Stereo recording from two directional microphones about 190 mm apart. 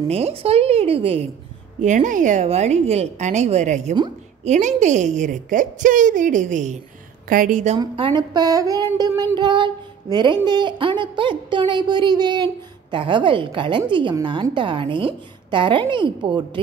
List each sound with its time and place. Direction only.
0.1 s a woman's voice: 30° right (ahead or behind)
7.8 s speech: 25° right (ahead or behind)